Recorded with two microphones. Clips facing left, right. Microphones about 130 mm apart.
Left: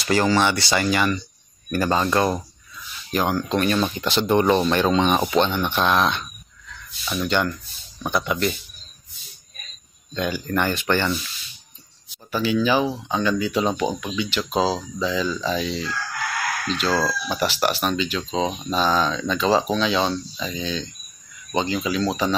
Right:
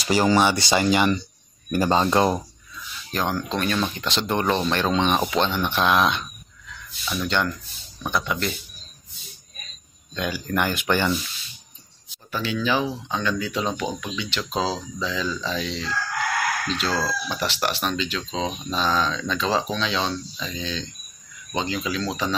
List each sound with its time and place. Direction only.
0.0 s speech: 15° right (ahead or behind)
3.1 s speech: 5° left (ahead or behind)
10.1 s speech: centre (ahead or behind)
12.3 s speech: 5° left (ahead or behind)